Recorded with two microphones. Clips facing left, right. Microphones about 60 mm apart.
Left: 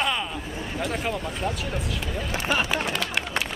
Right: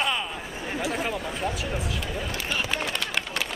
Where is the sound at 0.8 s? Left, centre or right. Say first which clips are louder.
Left 1 dB; centre.